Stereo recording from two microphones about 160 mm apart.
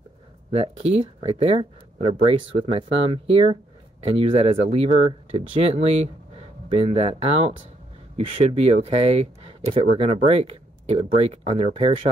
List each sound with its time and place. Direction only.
0.5 s speech: 40° right (ahead or behind)